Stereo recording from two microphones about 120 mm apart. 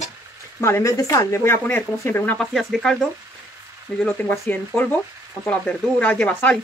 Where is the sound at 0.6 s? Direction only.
25° left (ahead or behind).